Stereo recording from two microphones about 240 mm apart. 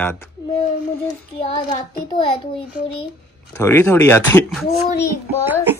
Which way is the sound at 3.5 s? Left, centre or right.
Centre.